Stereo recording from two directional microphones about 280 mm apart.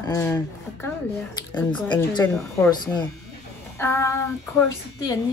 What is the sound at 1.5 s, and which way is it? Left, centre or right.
Speech, centre.